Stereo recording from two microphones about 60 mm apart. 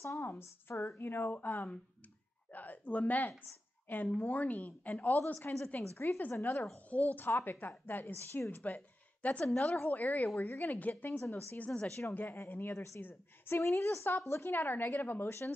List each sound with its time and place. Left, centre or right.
0.2 s a woman's voice: left
1.0 s a woman's voice: left
6.9 s a woman's voice: left
8.5 s speech: left
9.4 s a woman's voice: centre
9.8 s speech: left
11.1 s a woman's voice: left
11.5 s a woman's voice: left
12.7 s a woman's voice: left
14.3 s a woman's voice: left